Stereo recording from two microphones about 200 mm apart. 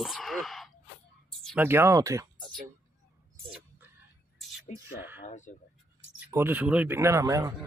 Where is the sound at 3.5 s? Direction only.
10° right (ahead or behind).